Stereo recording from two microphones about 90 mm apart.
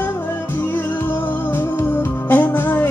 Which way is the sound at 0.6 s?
25° left (ahead or behind).